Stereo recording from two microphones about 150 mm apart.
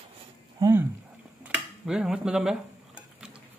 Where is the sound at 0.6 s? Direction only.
20° right (ahead or behind).